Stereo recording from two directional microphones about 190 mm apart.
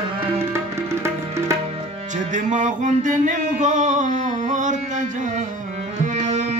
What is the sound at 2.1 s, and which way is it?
Music, 40° right (ahead or behind).